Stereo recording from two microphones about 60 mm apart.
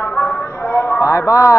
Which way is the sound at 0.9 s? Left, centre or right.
Left.